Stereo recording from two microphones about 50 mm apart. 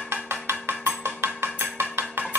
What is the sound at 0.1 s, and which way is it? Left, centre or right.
Cowbell, right.